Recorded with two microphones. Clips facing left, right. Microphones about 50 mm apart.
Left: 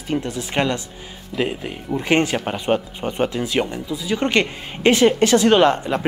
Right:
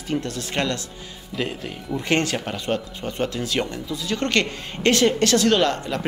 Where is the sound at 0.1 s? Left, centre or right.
Centre.